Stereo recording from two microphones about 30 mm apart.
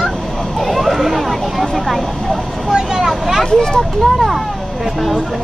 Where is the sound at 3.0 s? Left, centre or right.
Centre.